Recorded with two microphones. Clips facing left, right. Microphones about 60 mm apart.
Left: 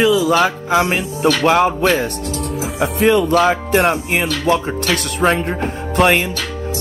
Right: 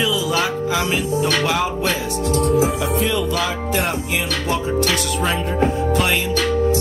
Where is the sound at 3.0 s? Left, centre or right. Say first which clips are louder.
Left 8 dB; left.